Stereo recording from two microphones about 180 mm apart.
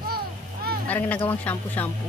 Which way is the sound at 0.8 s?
10° left (ahead or behind).